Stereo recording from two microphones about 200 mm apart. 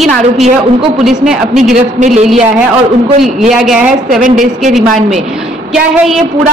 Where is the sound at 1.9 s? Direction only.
40° right (ahead or behind).